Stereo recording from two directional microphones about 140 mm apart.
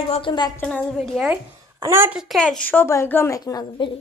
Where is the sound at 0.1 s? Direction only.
35° left (ahead or behind).